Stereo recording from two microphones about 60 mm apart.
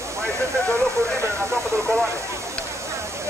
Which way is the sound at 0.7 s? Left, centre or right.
Right.